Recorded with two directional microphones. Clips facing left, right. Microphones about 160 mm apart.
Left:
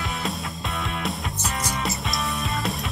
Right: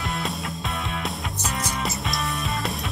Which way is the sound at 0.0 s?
Centre (ahead or behind).